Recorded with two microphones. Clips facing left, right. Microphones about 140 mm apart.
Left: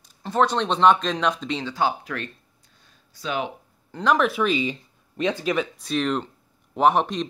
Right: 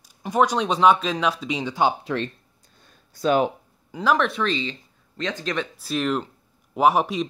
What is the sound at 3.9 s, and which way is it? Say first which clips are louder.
Speech: left 1 dB; 5° right (ahead or behind).